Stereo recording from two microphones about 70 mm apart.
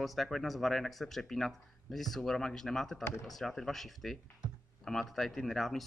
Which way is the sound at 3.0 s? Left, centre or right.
Left.